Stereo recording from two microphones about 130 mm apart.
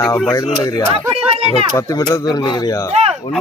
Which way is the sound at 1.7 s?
30° left (ahead or behind).